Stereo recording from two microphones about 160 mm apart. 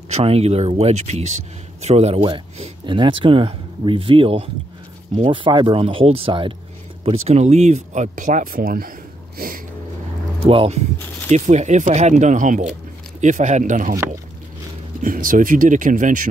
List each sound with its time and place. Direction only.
0.1 s speech: 40° right (ahead or behind); by 8.9 s 65° right (ahead or behind)
10.4 s speech: 35° right (ahead or behind)
15.0 s speech: 60° right (ahead or behind)